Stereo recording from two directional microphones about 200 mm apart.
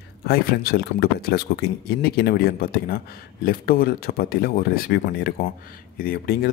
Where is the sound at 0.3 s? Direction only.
50° left (ahead or behind).